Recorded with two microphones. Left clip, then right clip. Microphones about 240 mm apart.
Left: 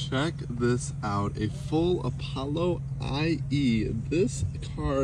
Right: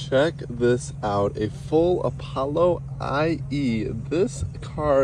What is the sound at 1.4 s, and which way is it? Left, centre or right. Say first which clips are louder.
Speech: right 7 dB; right.